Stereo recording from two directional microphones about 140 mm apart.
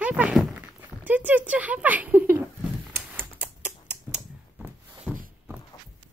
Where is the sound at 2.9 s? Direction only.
10° right (ahead or behind).